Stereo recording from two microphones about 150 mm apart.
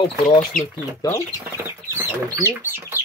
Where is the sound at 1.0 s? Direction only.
25° left (ahead or behind).